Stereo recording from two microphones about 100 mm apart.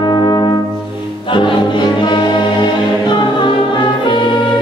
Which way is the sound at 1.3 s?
50° left (ahead or behind).